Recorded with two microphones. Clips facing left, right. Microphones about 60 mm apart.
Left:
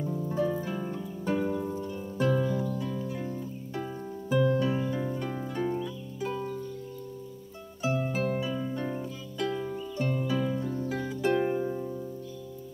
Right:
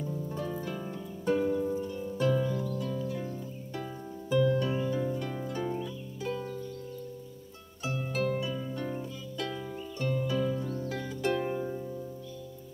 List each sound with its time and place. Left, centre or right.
0.0 s harp: centre
2.5 s music: centre
4.3 s harp: centre
6.2 s music: centre
7.8 s music: left
9.6 s harp: centre